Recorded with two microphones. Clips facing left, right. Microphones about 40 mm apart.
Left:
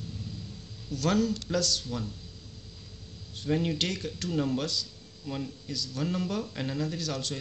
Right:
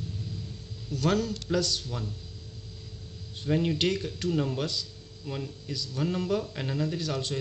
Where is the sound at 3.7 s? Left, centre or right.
Centre.